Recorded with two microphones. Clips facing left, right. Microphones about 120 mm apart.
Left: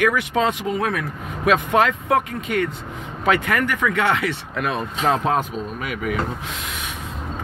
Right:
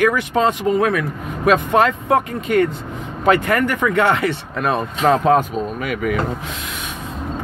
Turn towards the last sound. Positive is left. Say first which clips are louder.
# right 4 dB
turn(degrees=-55)  # may be behind; listen again after turning